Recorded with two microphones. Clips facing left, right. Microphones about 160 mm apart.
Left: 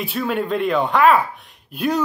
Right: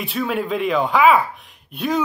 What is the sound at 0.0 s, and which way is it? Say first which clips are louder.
Speech: even; centre (ahead or behind).